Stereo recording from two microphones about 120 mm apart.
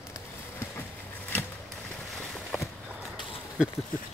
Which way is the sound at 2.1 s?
5° left (ahead or behind).